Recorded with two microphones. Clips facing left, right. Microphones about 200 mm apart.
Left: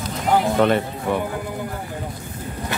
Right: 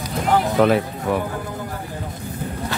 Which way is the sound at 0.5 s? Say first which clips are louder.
Right 1 dB; centre (ahead or behind).